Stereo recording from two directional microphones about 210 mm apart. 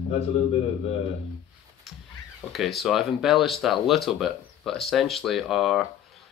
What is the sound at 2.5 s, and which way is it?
Speech, centre (ahead or behind).